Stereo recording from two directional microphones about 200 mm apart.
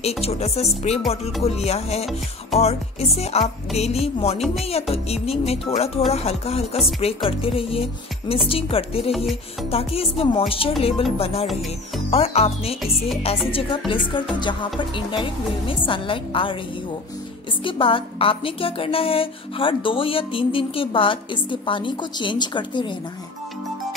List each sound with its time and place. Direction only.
0.2 s speech: 30° left (ahead or behind)
9.1 s music: centre (ahead or behind)
9.7 s speech: 30° left (ahead or behind)
17.6 s speech: 25° left (ahead or behind)